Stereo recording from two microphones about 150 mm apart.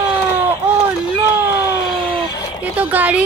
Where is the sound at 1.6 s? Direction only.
25° left (ahead or behind).